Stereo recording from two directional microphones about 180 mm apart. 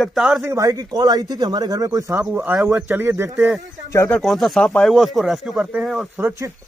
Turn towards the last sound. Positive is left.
turn(degrees=-15)  # may be behind; listen again after turning